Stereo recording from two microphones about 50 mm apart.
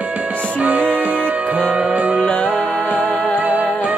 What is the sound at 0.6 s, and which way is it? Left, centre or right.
Music, right.